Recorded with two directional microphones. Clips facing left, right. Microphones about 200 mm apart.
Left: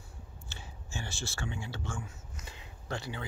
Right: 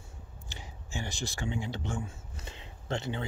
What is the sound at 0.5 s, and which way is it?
Speech, 15° right (ahead or behind).